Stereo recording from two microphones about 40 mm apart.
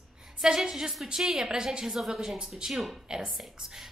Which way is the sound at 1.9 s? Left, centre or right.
Centre.